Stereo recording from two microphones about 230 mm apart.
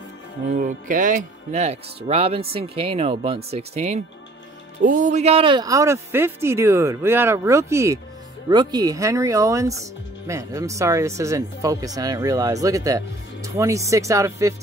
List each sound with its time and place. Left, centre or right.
0.5 s speech: right; by 14.5 s centre